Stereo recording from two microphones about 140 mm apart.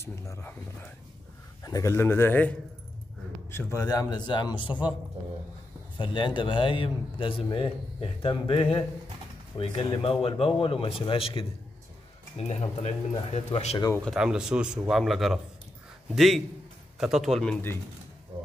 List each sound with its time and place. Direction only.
0.0 s speech: 15° left (ahead or behind)
1.6 s speech: 25° left (ahead or behind)
3.5 s speech: 25° left (ahead or behind)
5.9 s a man's voice: 35° left (ahead or behind)
12.4 s speech: 55° left (ahead or behind)
14.0 s speech: 5° right (ahead or behind)